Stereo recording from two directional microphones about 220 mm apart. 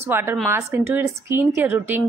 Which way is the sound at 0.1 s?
10° right (ahead or behind).